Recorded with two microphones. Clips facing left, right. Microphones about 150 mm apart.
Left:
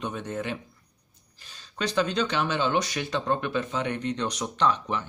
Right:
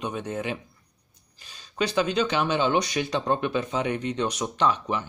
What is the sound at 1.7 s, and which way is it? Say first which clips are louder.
Speech: right 2 dB; 10° right (ahead or behind).